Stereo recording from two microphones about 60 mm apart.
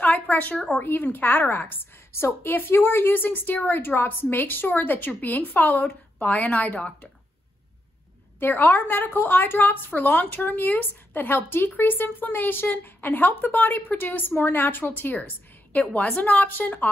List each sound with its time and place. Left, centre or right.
0.0 s a sound: left
0.7 s a woman's voice: left; by 7.1 s centre
8.4 s a woman's voice: left